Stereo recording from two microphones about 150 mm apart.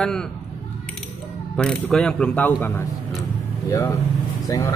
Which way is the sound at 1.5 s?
5° left (ahead or behind).